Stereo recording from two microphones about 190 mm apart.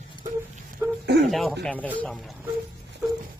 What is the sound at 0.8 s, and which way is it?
Dog, 15° right (ahead or behind).